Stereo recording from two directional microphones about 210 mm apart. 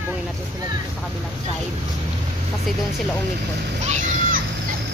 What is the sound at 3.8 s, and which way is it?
Speech, 35° right (ahead or behind).